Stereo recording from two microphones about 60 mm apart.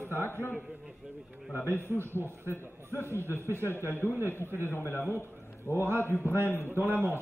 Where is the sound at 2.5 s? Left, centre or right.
Left.